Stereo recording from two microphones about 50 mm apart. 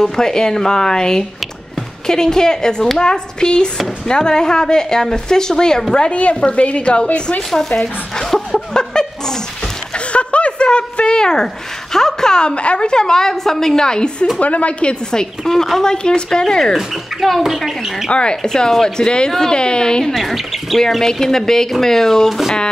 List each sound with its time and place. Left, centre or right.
0.0 s a woman's voice: centre
6.0 s a woman's voice: left
14.4 s a woman's voice: left
16.7 s speech: centre
18.1 s a woman's voice: centre
20.2 s a woman's voice: centre